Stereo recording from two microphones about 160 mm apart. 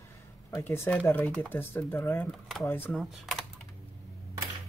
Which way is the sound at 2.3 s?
Centre (ahead or behind).